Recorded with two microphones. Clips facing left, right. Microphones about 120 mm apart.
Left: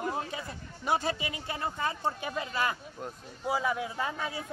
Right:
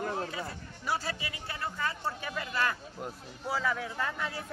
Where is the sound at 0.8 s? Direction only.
20° left (ahead or behind).